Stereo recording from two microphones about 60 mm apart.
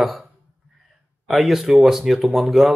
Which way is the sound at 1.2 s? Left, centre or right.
Centre.